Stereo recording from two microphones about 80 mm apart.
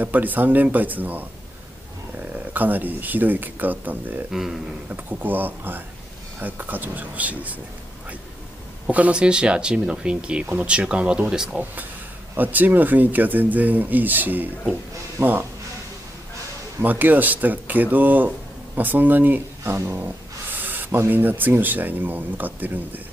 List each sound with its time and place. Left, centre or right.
0.0 s speech: right
4.3 s a sound: centre
4.8 s speech: right
8.8 s speech: centre
12.4 s speech: right
15.2 s speech: right
16.8 s speech: right
20.5 s a sound: right
21.0 s speech: right